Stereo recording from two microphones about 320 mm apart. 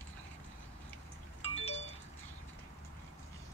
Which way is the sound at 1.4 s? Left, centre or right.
Centre.